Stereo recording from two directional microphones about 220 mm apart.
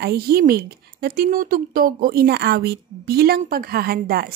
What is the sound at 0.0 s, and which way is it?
Speech, 45° right (ahead or behind).